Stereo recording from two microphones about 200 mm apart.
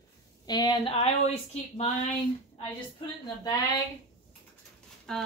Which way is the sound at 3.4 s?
20° left (ahead or behind).